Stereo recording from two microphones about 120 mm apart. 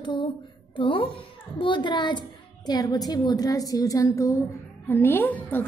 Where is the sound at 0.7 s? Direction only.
45° left (ahead or behind).